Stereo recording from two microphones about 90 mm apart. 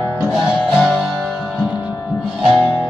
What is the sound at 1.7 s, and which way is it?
Music, 15° right (ahead or behind).